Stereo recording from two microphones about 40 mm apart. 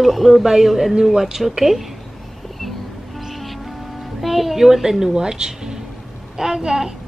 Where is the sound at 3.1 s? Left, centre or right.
Centre.